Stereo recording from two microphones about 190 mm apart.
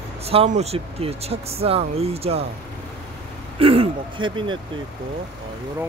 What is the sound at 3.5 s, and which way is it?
Speech, 30° right (ahead or behind).